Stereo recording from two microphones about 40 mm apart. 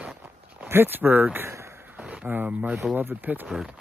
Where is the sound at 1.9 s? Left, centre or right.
Right.